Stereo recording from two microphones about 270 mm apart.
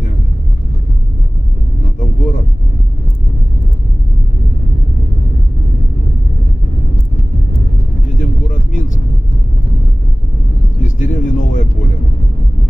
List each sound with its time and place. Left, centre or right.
2.0 s vehicle: left
8.2 s vehicle: left
10.8 s a sound: left